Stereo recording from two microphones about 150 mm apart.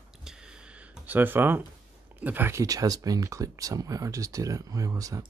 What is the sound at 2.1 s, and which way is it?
Speech, 10° right (ahead or behind).